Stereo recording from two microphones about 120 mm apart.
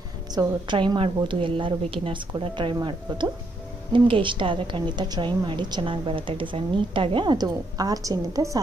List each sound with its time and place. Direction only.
0.3 s a woman's voice: 35° right (ahead or behind)